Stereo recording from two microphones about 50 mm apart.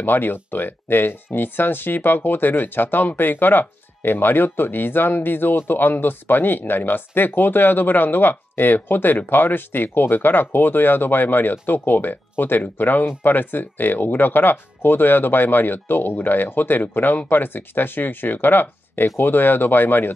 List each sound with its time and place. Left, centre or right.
0.0 s speech: left